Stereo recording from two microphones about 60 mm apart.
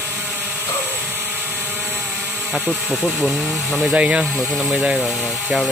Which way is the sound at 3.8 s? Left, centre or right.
Centre.